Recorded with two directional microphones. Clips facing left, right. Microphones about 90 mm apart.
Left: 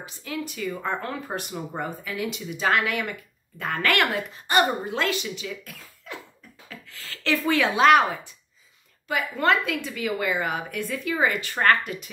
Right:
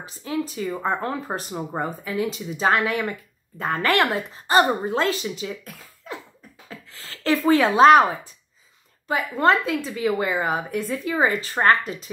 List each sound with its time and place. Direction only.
0.0 s speech: 30° right (ahead or behind)